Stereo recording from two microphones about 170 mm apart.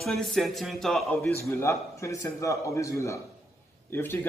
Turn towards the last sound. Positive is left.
turn(degrees=10)  # may be behind; listen again after turning